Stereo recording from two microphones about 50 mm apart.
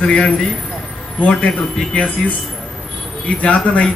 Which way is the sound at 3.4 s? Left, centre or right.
Left.